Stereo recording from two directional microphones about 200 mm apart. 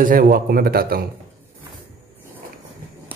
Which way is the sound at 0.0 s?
45° right (ahead or behind).